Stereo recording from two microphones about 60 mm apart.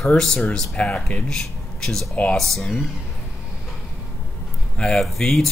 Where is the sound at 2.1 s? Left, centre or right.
Left.